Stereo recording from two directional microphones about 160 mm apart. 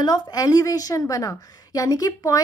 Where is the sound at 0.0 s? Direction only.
25° left (ahead or behind).